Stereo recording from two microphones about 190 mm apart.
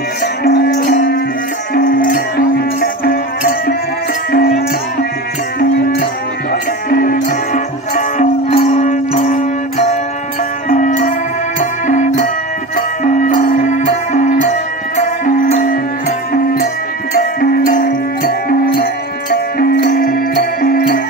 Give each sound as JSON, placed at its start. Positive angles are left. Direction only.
{"t": 0.4, "sound": "music", "side_deg": 55}
{"t": 12.7, "sound": "music", "side_deg": 40}